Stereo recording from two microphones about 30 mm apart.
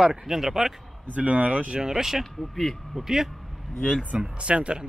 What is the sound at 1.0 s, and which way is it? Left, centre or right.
Speech, right.